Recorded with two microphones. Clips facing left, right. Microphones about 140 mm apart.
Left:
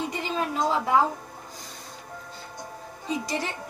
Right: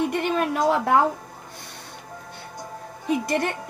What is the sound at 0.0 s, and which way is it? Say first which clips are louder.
Music: right 6 dB; 60° right (ahead or behind).